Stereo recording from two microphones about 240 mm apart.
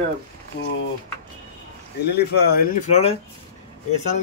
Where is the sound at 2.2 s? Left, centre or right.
Left.